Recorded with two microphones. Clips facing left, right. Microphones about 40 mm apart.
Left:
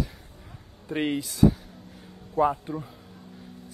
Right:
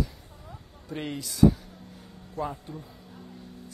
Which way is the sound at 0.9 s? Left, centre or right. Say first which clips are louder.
Left 7 dB; left.